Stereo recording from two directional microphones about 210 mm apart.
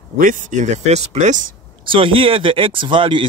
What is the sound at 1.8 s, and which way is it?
Speech, 25° right (ahead or behind).